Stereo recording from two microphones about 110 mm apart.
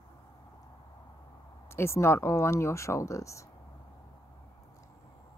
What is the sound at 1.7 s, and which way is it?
Speech, 25° left (ahead or behind).